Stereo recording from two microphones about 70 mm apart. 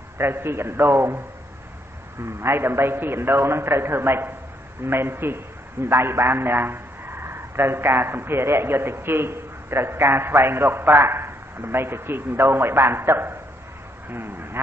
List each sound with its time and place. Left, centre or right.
0.2 s a man's voice: right
2.2 s a man's voice: right